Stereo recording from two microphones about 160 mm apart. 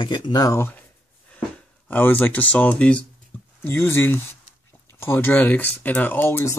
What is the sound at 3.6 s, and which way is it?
Speech, 15° left (ahead or behind).